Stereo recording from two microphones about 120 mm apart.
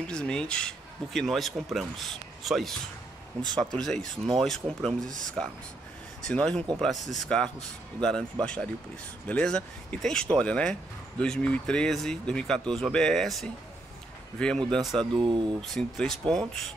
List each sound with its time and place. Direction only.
0.0 s speech: 5° left (ahead or behind)
15.1 s speech: 45° right (ahead or behind)
15.6 s speech: centre (ahead or behind)